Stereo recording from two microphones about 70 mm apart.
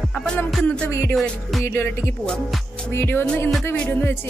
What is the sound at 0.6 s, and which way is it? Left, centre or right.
Music, centre.